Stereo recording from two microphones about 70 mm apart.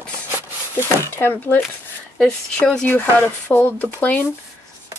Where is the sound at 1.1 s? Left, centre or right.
Left.